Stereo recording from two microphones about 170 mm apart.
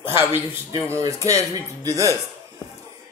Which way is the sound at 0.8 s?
20° right (ahead or behind).